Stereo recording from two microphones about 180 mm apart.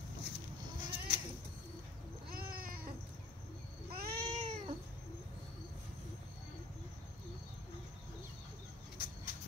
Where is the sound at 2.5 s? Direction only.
55° right (ahead or behind).